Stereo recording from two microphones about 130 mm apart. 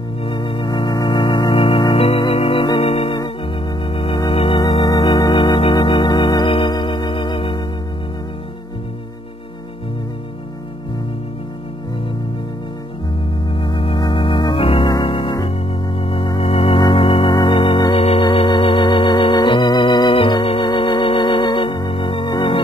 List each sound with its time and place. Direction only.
0.2 s organ: 40° left (ahead or behind)
2.9 s organ: 50° left (ahead or behind)
3.2 s organ: 40° left (ahead or behind)
4.6 s organ: 30° left (ahead or behind)
13.6 s organ: 40° left (ahead or behind)